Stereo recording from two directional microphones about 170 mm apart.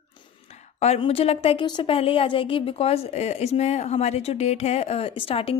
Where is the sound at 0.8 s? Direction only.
35° left (ahead or behind).